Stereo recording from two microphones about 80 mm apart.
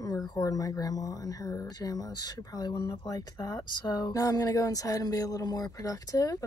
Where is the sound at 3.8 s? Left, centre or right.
Left.